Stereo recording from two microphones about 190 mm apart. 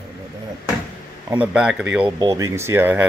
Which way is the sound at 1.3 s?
5° right (ahead or behind).